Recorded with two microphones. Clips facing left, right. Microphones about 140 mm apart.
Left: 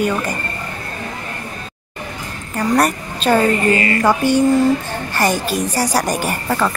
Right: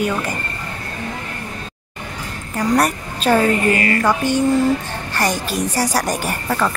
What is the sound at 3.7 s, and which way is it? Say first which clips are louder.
Speech: left 1 dB; 25° left (ahead or behind).